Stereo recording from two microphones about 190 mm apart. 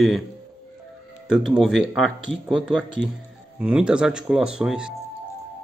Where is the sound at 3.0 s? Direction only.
65° right (ahead or behind).